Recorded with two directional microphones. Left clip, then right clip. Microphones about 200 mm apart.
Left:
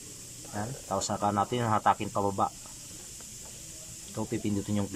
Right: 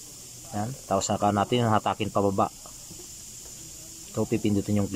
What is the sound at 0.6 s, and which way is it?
Speech, 15° right (ahead or behind).